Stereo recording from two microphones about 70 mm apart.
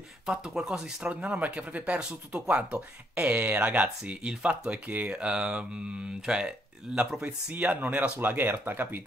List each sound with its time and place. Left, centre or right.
0.3 s speech: centre
7.2 s speech: right